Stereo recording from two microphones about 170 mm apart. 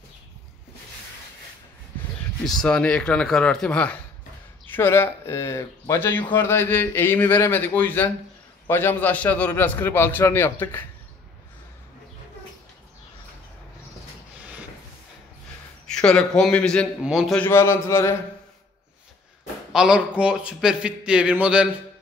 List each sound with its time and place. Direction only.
2.4 s a man's voice: 5° left (ahead or behind)
15.9 s a man's voice: 5° left (ahead or behind)
17.4 s speech: 15° left (ahead or behind)
19.7 s a man's voice: 5° right (ahead or behind)